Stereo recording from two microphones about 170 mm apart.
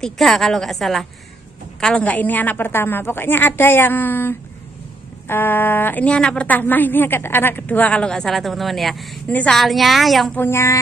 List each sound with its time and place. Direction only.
0.0 s a woman's voice: centre (ahead or behind)
10.4 s a woman's voice: 15° left (ahead or behind)